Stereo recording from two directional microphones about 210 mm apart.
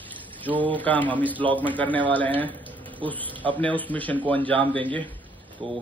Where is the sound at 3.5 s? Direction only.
5° left (ahead or behind).